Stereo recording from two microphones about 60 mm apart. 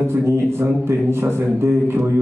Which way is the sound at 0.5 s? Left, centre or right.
Right.